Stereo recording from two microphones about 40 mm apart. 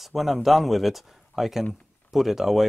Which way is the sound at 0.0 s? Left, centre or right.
Centre.